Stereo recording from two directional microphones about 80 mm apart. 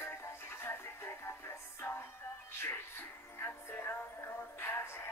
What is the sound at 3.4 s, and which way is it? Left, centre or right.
Music, left.